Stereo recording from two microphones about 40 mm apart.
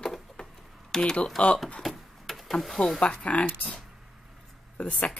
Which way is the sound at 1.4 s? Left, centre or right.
Left.